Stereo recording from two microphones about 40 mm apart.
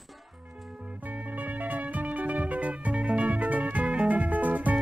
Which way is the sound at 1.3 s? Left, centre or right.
Right.